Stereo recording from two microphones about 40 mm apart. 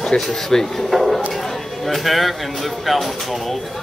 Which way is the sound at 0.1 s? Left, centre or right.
Centre.